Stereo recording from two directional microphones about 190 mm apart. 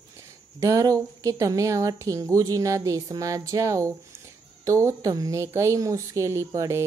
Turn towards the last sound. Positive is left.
turn(degrees=-15)  # may be behind; listen again after turning